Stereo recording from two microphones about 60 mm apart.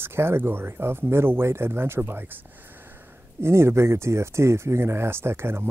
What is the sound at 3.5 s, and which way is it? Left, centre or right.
Speech, right.